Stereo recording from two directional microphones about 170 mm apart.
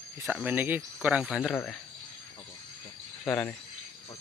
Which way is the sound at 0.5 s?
10° right (ahead or behind).